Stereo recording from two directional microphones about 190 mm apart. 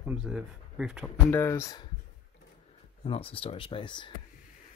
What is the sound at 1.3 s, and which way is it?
Speech, 10° left (ahead or behind).